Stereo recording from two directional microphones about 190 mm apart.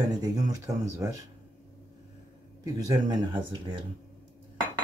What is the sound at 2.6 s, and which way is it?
Speech, 20° right (ahead or behind).